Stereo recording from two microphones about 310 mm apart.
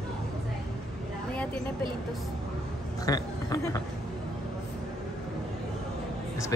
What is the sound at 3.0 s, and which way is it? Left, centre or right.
Speech, centre.